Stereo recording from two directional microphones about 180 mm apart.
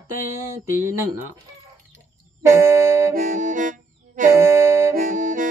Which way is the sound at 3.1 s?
50° right (ahead or behind).